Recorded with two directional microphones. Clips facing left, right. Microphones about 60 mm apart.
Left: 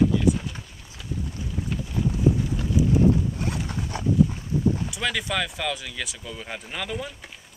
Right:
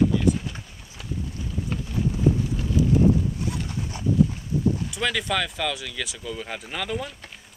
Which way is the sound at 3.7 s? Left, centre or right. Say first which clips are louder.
Left 2 dB; left.